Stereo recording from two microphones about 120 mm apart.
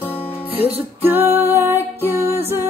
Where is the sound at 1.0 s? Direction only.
20° right (ahead or behind).